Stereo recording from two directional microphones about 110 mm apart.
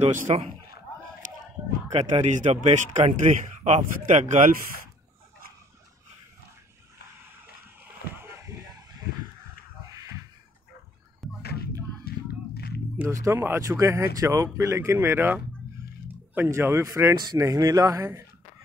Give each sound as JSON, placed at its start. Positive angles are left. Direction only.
{"t": 0.0, "sound": "speech", "side_deg": -70}
{"t": 1.9, "sound": "a man's voice", "side_deg": -90}
{"t": 8.2, "sound": "a sound", "side_deg": -25}
{"t": 11.2, "sound": "music", "side_deg": 0}
{"t": 12.9, "sound": "speech", "side_deg": -25}